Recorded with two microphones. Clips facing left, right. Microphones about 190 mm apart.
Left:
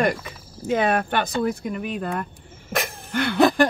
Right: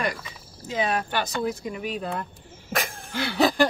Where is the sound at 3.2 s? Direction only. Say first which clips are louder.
Left 4 dB; 55° left (ahead or behind).